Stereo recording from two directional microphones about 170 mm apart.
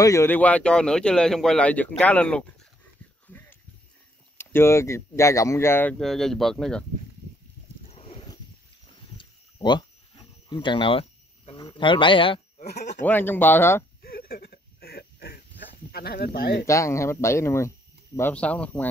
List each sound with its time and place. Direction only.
0.0 s speech: 15° left (ahead or behind)
3.3 s a sound: 10° left (ahead or behind)
4.4 s speech: 15° left (ahead or behind)
7.8 s a sound: 35° left (ahead or behind)
10.1 s cricket: 30° left (ahead or behind)
12.6 s speech: 85° left
13.0 s speech: 10° left (ahead or behind)
14.0 s a sound: 65° left (ahead or behind)
15.9 s speech: 65° left (ahead or behind)
16.6 s speech: 15° left (ahead or behind)